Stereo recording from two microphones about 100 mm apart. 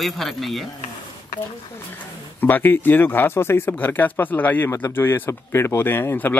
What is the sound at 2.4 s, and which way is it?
Speech, 20° left (ahead or behind).